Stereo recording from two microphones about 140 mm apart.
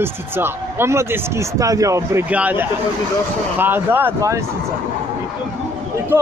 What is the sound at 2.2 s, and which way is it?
Speech, 10° right (ahead or behind).